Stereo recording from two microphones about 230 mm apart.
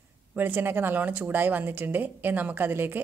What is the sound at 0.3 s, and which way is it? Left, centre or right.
A woman's voice, centre.